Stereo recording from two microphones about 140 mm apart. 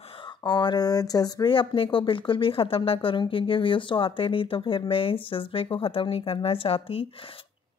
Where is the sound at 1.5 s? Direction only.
40° left (ahead or behind).